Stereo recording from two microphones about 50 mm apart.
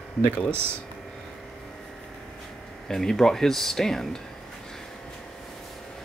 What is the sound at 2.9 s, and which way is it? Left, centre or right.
Speech, centre.